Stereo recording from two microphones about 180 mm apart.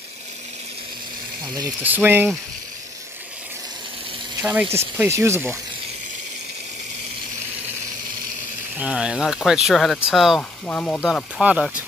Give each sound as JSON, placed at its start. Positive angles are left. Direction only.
{"t": 1.8, "sound": "speech", "side_deg": -10}
{"t": 4.4, "sound": "speech", "side_deg": -10}
{"t": 8.7, "sound": "speech", "side_deg": -5}